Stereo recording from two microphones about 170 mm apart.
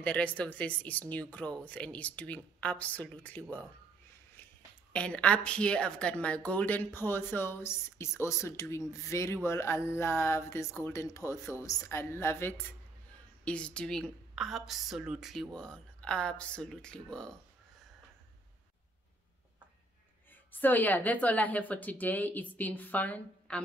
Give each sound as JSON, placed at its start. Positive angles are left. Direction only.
{"t": 0.0, "sound": "a woman's voice", "side_deg": 10}
{"t": 4.9, "sound": "a woman's voice", "side_deg": 5}
{"t": 20.6, "sound": "a woman's voice", "side_deg": 10}